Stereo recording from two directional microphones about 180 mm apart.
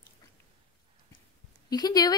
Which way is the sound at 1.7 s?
20° left (ahead or behind).